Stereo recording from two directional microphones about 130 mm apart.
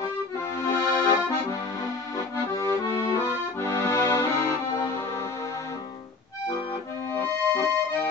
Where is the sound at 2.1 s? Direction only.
25° left (ahead or behind).